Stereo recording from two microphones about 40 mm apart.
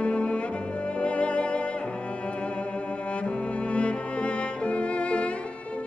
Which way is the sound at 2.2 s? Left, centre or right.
Left.